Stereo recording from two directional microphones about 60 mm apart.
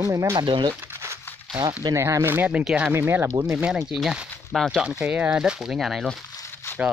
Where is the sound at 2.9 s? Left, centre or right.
Right.